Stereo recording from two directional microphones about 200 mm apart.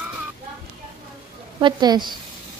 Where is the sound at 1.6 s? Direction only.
20° right (ahead or behind).